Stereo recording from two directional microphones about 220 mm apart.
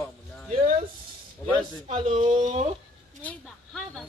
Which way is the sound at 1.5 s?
30° right (ahead or behind).